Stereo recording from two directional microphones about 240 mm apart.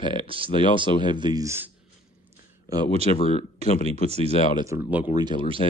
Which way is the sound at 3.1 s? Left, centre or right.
Left.